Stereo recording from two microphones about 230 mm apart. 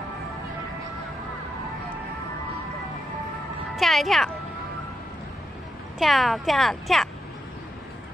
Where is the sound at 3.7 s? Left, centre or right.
Centre.